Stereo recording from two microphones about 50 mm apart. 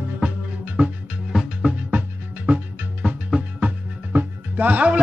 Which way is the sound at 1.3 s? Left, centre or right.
Centre.